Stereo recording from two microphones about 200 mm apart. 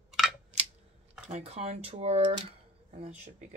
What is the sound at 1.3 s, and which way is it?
Speech, 30° right (ahead or behind).